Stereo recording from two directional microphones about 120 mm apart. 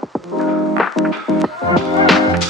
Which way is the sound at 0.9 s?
Centre (ahead or behind).